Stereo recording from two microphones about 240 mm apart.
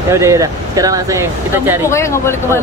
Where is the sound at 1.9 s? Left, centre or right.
Centre.